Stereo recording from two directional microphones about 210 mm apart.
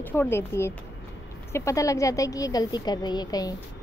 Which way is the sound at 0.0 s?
10° left (ahead or behind).